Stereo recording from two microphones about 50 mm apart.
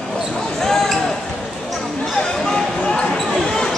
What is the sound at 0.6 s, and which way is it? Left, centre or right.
Basketball bounce, centre.